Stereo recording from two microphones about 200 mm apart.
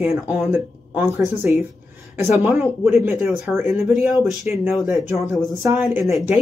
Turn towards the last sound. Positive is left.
turn(degrees=0)  # may be behind; listen again after turning